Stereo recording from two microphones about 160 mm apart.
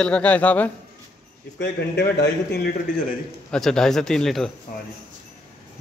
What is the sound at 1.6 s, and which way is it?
Speech, 90° left.